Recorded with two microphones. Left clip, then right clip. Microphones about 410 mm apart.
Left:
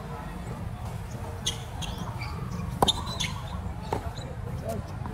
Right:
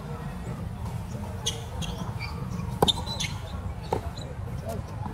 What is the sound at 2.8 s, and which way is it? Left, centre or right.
Basketball bounce, centre.